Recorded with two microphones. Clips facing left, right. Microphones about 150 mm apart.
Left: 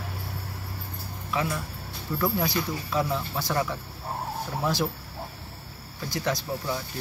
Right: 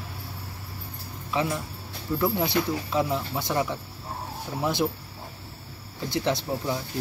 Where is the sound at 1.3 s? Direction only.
25° right (ahead or behind).